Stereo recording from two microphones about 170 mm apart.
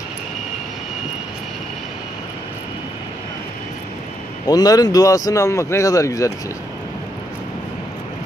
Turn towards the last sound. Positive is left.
turn(degrees=20)  # may be behind; listen again after turning